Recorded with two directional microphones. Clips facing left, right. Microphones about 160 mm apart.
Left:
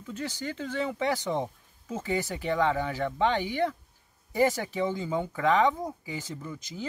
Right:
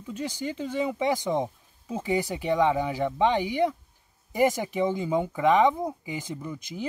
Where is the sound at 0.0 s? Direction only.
15° right (ahead or behind).